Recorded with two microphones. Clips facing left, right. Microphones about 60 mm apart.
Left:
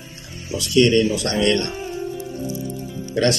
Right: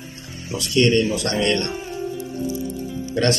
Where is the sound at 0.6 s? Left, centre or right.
Right.